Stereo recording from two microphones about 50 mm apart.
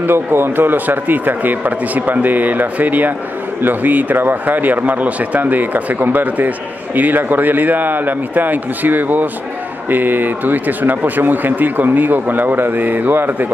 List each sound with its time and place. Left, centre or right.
0.0 s speech: right